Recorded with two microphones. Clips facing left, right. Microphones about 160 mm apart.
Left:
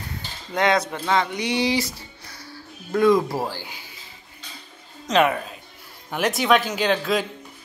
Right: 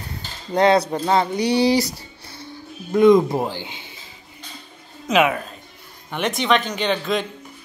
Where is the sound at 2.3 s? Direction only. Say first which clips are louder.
Right 6 dB; 20° right (ahead or behind).